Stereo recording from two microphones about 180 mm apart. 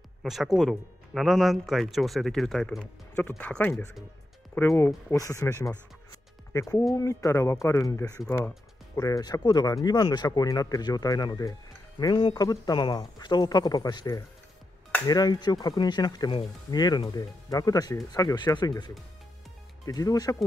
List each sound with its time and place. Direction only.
0.2 s speech: centre (ahead or behind)
7.0 s speech: 15° left (ahead or behind)